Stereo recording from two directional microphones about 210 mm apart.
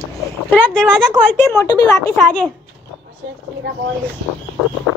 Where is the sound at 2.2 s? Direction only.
5° left (ahead or behind).